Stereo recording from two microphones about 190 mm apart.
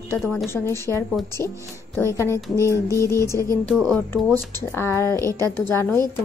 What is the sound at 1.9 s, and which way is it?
A woman's voice, 15° left (ahead or behind).